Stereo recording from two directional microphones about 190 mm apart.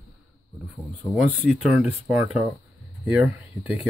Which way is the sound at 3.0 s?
10° right (ahead or behind).